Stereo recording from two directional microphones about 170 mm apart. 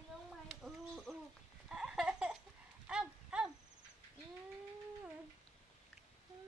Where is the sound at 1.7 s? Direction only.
5° right (ahead or behind).